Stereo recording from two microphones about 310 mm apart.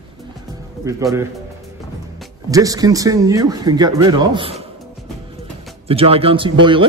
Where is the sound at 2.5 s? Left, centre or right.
Centre.